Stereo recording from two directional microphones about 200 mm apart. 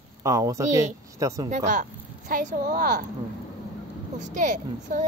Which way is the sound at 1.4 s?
40° right (ahead or behind).